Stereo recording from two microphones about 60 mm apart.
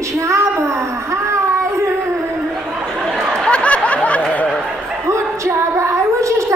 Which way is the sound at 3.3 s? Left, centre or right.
Centre.